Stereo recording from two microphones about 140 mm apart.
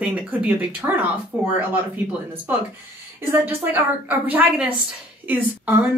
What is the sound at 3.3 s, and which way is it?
A woman's voice, 15° right (ahead or behind).